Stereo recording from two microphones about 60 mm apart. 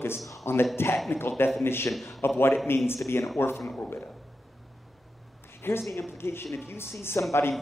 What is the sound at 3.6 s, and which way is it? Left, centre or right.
Speech, centre.